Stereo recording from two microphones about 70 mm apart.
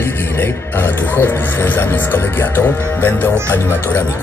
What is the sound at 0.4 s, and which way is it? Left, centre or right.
Speech, left.